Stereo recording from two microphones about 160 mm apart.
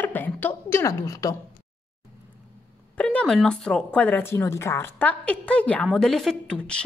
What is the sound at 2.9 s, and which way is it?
Speech, 10° left (ahead or behind).